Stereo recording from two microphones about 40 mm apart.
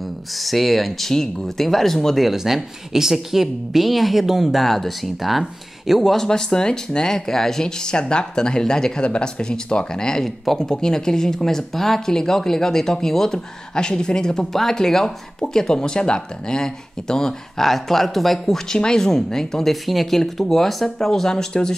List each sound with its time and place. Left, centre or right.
0.3 s a woman's voice: centre
2.2 s a woman's voice: centre
6.1 s speech: centre
10.2 s speech: centre
10.6 s a woman's voice: centre